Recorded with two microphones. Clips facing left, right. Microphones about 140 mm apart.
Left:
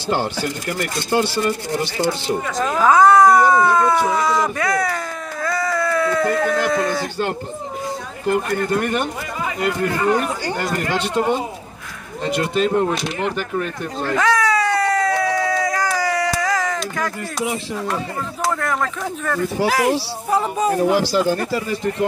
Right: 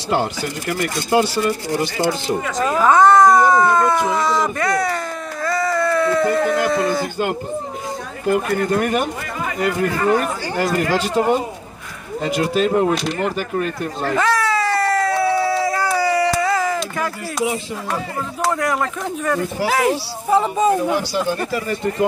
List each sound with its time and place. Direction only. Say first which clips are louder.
2.2 s speech: right 1 dB; centre (ahead or behind)
8.3 s speech: right 1 dB; 5° right (ahead or behind)
14.1 s a sound: left 1 dB; centre (ahead or behind)
18.5 s speech: right 2 dB; 10° right (ahead or behind)
19.7 s speech: even; centre (ahead or behind)
20.9 s speech: left 3 dB; 90° left